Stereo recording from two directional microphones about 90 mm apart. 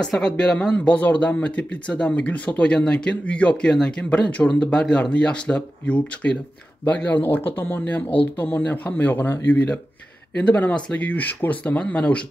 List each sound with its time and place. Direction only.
0.0 s speech: 10° left (ahead or behind)